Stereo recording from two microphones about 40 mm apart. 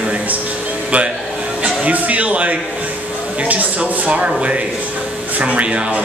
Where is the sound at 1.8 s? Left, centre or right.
Right.